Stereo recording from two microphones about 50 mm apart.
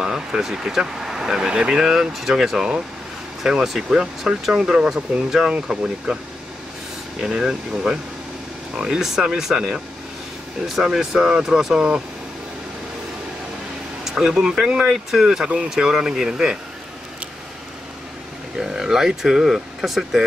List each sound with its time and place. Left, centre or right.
0.0 s speech: centre
7.2 s speech: centre
14.0 s speech: centre
14.9 s speech: centre
18.6 s speech: centre